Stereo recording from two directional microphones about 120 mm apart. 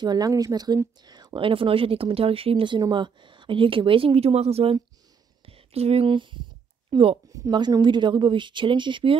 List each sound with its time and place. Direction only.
0.0 s speech: 35° right (ahead or behind)